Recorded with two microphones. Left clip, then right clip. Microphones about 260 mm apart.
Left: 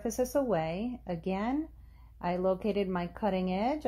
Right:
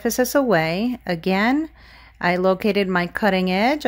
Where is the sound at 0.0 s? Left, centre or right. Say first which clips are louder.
Right 11 dB; right.